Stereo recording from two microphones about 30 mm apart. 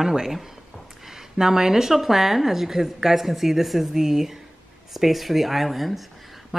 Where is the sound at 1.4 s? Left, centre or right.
Centre.